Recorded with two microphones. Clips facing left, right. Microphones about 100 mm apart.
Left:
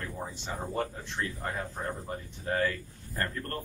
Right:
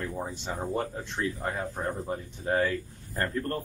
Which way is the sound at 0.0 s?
20° right (ahead or behind).